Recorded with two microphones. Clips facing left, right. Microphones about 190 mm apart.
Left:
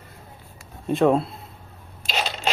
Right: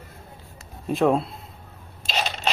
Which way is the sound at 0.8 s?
Centre (ahead or behind).